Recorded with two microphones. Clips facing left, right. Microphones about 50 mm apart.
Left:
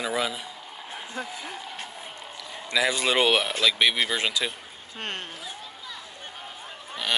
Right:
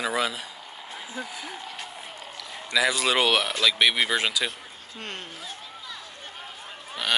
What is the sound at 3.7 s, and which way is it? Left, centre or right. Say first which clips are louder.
Speech: right 1 dB; centre.